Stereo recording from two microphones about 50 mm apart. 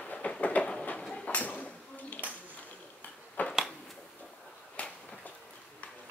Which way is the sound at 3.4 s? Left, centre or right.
Left.